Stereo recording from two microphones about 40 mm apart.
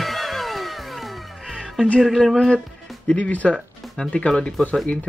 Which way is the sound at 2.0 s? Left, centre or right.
Centre.